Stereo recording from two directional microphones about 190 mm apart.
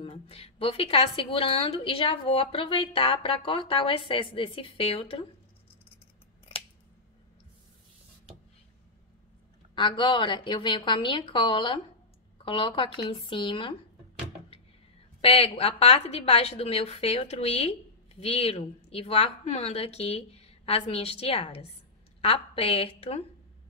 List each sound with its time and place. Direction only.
0.0 s a woman's voice: 30° left (ahead or behind)
9.8 s a woman's voice: 25° left (ahead or behind)
15.2 s a woman's voice: 30° left (ahead or behind)